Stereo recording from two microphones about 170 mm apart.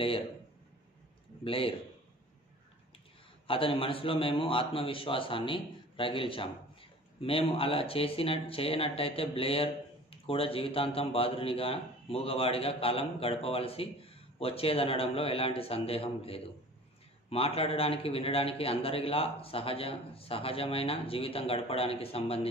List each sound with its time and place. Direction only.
1.4 s a man's voice: 30° left (ahead or behind)
3.4 s a man's voice: 30° left (ahead or behind)